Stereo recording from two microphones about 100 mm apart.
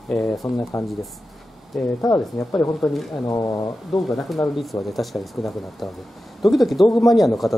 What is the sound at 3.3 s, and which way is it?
Speech, 40° left (ahead or behind).